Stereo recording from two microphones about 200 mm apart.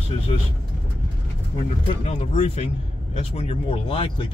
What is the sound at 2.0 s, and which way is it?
Speech, 35° left (ahead or behind).